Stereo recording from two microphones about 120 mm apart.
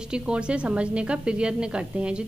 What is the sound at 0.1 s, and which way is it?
A woman's voice, 10° right (ahead or behind).